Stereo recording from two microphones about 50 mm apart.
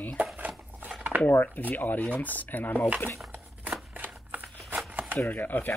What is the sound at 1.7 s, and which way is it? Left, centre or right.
Speech, left.